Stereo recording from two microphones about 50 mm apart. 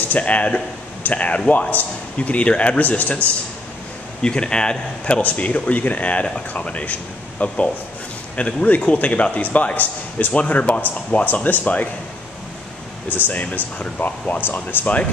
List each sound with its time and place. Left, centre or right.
0.1 s a man's voice: left
4.2 s speech: centre
5.2 s a man's voice: left
13.1 s speech: left
14.4 s speech: left